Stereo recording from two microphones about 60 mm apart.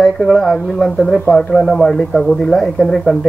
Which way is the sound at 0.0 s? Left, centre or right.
Centre.